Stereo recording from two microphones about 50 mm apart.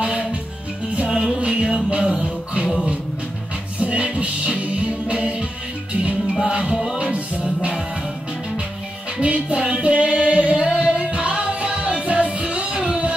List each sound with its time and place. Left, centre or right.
0.0 s music: centre
3.8 s music: right
6.5 s music: centre
9.2 s music: right